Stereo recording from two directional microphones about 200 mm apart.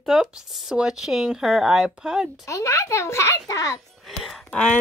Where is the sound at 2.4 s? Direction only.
15° left (ahead or behind).